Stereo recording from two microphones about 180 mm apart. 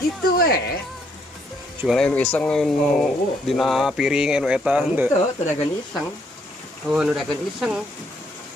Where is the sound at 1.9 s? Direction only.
5° left (ahead or behind).